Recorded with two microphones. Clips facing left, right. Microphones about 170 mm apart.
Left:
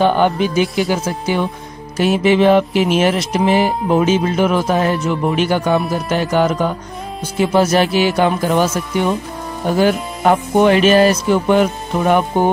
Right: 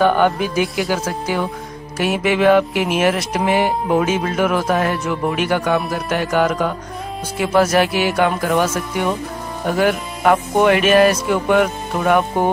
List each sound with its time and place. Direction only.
0.0 s speech: 25° left (ahead or behind)
9.8 s music: 30° left (ahead or behind)